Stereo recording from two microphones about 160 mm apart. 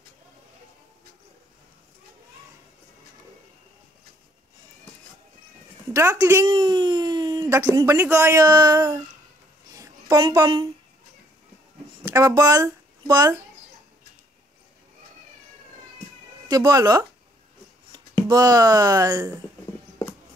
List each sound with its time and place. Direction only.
5.9 s a woman's voice: 20° right (ahead or behind)
6.4 s a sound: 30° right (ahead or behind)
7.7 s a woman's voice: 20° right (ahead or behind)
9.8 s a sound: 20° right (ahead or behind)
10.2 s a woman's voice: 30° right (ahead or behind)
12.1 s a child's voice: 20° right (ahead or behind)
16.4 s a woman's voice: 25° right (ahead or behind)